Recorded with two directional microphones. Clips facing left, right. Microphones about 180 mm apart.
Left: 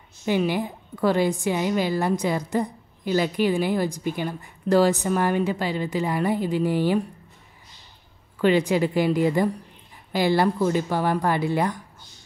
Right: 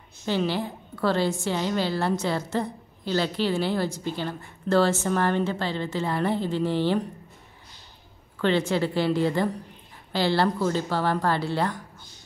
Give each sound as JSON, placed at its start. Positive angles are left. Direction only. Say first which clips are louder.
{"t": 0.2, "sound": "a woman's voice", "louder": "left 3 dB", "side_deg": 10}
{"t": 8.4, "sound": "a woman's voice", "louder": "left 3 dB", "side_deg": 10}